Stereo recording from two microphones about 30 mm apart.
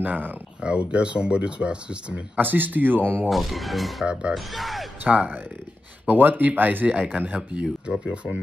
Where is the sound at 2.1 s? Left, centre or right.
Right.